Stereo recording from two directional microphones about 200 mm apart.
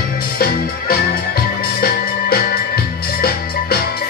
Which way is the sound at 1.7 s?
50° left (ahead or behind).